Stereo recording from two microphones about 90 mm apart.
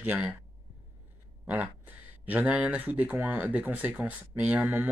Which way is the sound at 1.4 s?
20° right (ahead or behind).